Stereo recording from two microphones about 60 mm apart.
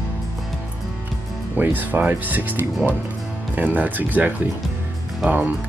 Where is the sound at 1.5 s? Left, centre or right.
Right.